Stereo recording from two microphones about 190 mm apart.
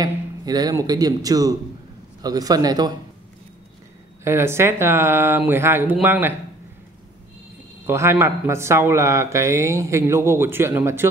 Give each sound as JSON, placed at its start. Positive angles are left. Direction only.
{"t": 0.0, "sound": "speech", "side_deg": -20}
{"t": 4.2, "sound": "speech", "side_deg": -15}
{"t": 7.8, "sound": "speech", "side_deg": -15}